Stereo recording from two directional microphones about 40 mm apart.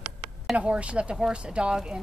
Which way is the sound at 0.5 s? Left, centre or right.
Right.